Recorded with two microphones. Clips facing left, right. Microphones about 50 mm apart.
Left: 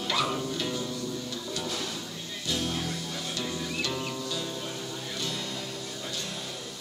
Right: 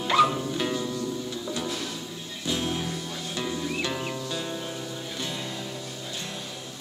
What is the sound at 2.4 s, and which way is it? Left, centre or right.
Music, right.